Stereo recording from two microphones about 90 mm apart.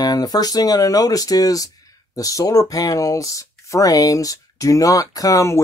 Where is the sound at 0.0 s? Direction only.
45° left (ahead or behind).